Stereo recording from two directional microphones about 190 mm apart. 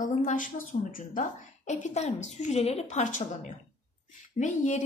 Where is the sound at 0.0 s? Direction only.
40° left (ahead or behind).